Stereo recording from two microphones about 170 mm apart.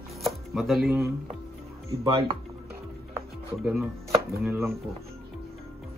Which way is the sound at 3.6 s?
5° right (ahead or behind).